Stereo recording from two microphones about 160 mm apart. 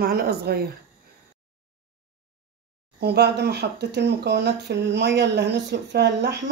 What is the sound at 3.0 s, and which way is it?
Speech, 90° right.